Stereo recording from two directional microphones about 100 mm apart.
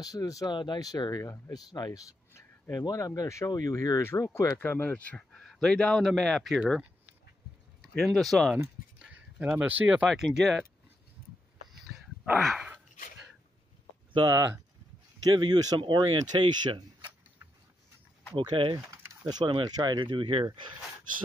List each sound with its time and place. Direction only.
0.0 s speech: 35° left (ahead or behind)
2.3 s a sound: 30° left (ahead or behind)
2.8 s speech: 35° left (ahead or behind); by 5.2 s 15° left (ahead or behind)
5.3 s a man's voice: 5° left (ahead or behind)
7.8 s speech: 5° left (ahead or behind)
9.0 s speech: 10° right (ahead or behind)
10.0 s speech: centre (ahead or behind)
12.4 s speech: centre (ahead or behind)
15.3 s speech: 45° right (ahead or behind)
18.3 s speech: 55° right (ahead or behind)
18.9 s a sound: 45° right (ahead or behind)
19.5 s speech: 45° right (ahead or behind)